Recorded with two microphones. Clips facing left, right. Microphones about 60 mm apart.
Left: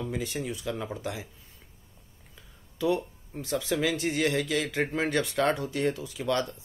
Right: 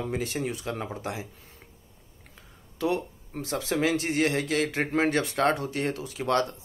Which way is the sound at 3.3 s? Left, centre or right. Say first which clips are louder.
Even; right.